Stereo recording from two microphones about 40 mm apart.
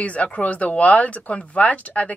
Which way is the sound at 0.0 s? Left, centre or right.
Left.